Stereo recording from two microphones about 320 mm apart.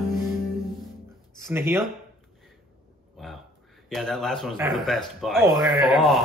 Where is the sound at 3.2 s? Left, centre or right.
Centre.